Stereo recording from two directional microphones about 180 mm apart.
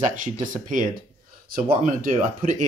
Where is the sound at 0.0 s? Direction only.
45° right (ahead or behind).